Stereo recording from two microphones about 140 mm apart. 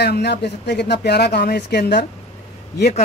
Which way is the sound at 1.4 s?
90° left.